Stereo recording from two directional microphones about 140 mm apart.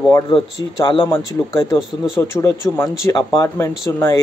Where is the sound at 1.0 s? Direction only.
20° left (ahead or behind).